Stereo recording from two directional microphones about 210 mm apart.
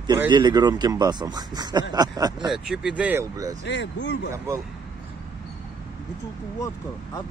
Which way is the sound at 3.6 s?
55° left (ahead or behind).